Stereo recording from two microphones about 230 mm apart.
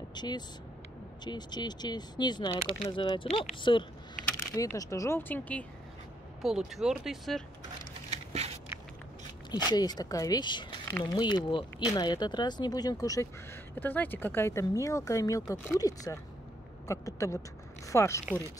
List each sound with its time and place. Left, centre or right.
0.1 s speech: centre
8.1 s a sound: right
9.5 s speech: centre